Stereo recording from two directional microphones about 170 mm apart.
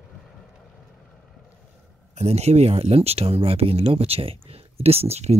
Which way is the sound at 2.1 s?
40° right (ahead or behind).